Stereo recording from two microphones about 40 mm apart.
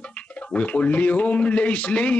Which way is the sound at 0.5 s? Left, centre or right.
Left.